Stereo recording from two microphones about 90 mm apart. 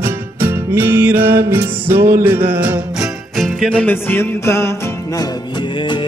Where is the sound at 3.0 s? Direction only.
Centre (ahead or behind).